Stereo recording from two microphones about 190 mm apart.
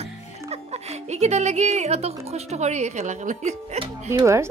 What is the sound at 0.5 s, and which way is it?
A woman's voice, 35° right (ahead or behind).